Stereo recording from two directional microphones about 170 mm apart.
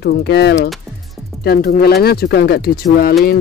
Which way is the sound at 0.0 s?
80° left.